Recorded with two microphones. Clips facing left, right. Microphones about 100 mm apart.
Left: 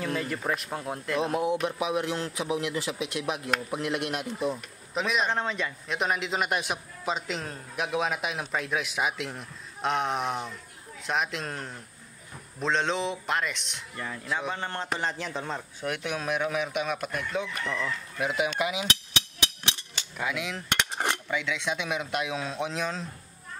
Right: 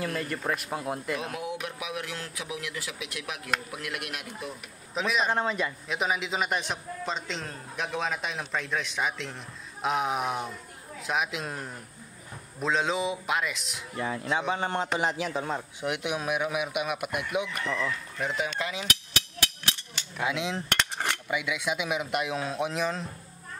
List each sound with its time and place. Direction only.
0.0 s a man's voice: centre (ahead or behind)
1.2 s speech: 30° left (ahead or behind)
4.9 s a man's voice: centre (ahead or behind)
14.5 s speech: 15° right (ahead or behind)
17.6 s a man's voice: 5° right (ahead or behind); by 18.9 s 15° left (ahead or behind)
20.2 s dishes: 25° right (ahead or behind)
20.7 s cutlery: 15° left (ahead or behind)
21.3 s a man's voice: 10° right (ahead or behind)